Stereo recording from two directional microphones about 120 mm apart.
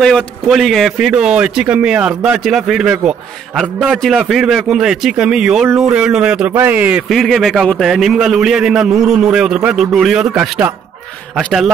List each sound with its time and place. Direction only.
0.0 s a man's voice: 5° left (ahead or behind); by 7.0 s 15° right (ahead or behind)
7.1 s a man's voice: centre (ahead or behind)